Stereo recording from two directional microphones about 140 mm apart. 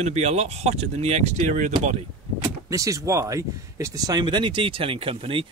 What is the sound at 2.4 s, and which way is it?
Speech, 25° right (ahead or behind).